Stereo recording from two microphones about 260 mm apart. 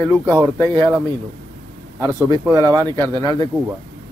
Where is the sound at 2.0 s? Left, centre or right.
Centre.